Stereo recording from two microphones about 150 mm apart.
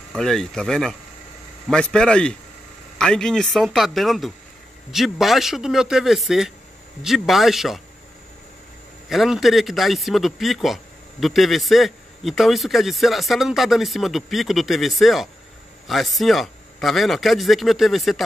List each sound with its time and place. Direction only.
0.1 s speech: 5° left (ahead or behind)
9.1 s speech: centre (ahead or behind)